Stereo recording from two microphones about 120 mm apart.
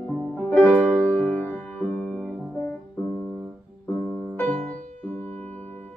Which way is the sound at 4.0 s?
5° right (ahead or behind).